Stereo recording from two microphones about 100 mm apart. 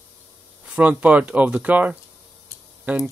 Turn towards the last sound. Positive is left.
turn(degrees=-15)  # may be behind; listen again after turning